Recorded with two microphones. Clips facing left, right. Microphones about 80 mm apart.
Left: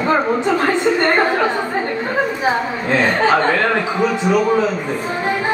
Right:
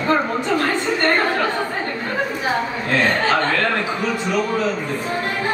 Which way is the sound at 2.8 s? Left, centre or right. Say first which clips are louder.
Left 4 dB; centre.